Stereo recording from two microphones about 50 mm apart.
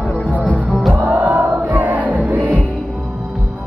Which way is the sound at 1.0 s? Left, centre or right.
Right.